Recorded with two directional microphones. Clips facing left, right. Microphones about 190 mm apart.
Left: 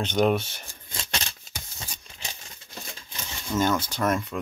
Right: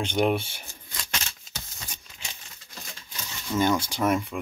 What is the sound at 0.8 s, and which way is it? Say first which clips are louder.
Scissors: left 2 dB; 30° left (ahead or behind).